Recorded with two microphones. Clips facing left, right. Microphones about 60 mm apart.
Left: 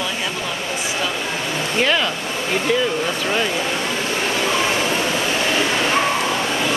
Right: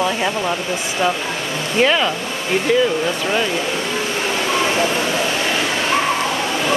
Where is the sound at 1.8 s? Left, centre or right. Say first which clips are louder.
Right 4 dB; centre.